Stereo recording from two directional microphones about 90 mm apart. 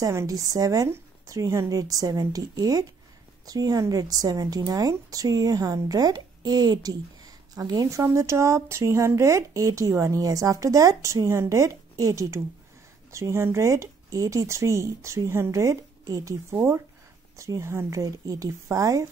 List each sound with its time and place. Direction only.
0.0 s a woman's voice: 35° right (ahead or behind)